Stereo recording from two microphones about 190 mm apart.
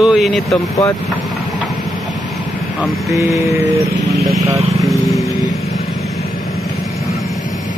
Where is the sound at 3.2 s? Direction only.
15° right (ahead or behind).